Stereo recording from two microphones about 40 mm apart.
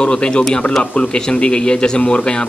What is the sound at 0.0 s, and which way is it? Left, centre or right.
Speech, left.